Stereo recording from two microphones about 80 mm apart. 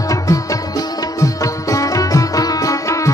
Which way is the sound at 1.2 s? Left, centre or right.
Left.